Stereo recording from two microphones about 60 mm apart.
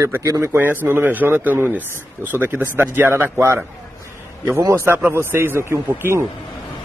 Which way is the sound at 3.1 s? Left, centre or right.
Right.